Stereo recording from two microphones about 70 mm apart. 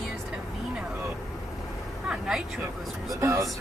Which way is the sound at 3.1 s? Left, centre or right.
Right.